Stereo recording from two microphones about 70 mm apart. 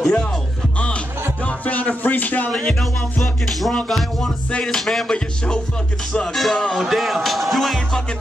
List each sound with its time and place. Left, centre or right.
0.0 s music: centre; by 2.5 s left
2.5 s music: centre